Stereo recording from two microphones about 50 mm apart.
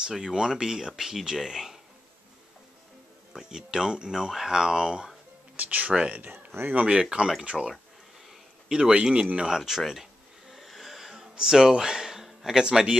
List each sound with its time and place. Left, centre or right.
0.1 s speech: centre
3.3 s speech: centre
5.6 s speech: right
7.0 s speech: centre
9.6 s speech: centre
10.5 s a sound: centre